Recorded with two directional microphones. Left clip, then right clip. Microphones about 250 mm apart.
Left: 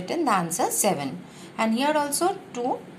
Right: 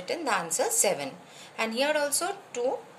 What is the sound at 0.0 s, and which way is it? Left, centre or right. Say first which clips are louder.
A woman's voice: left 5 dB; centre.